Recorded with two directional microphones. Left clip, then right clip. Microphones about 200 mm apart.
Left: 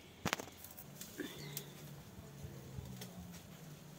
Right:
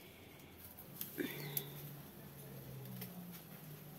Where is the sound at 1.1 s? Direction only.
35° right (ahead or behind).